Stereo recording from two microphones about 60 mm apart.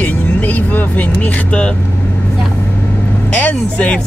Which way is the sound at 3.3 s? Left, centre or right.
Left.